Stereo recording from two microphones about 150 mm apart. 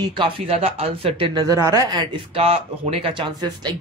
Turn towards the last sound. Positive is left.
turn(degrees=-30)  # may be behind; listen again after turning